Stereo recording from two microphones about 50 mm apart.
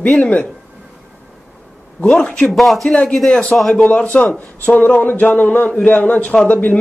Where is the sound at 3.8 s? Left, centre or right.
Left.